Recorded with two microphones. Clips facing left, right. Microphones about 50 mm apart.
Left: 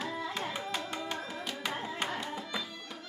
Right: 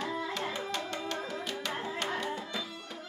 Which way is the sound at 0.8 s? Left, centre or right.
Centre.